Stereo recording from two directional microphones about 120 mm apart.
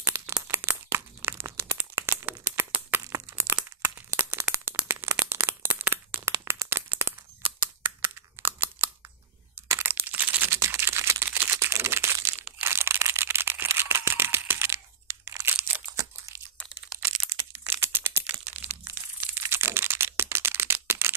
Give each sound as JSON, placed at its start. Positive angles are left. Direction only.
{"t": 0.1, "sound": "a sound", "side_deg": -30}
{"t": 0.6, "sound": "crumpling", "side_deg": -20}
{"t": 4.2, "sound": "crack", "side_deg": -20}
{"t": 5.2, "sound": "a sound", "side_deg": -20}
{"t": 9.7, "sound": "crumpling", "side_deg": -20}
{"t": 12.5, "sound": "a sound", "side_deg": -20}
{"t": 16.0, "sound": "crumpling", "side_deg": -25}
{"t": 16.9, "sound": "crunch", "side_deg": -5}
{"t": 17.3, "sound": "crumpling", "side_deg": -20}